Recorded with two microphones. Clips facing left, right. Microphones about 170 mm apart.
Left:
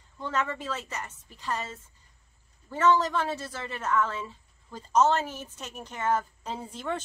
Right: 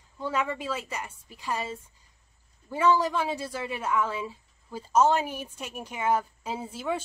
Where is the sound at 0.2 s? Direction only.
10° right (ahead or behind).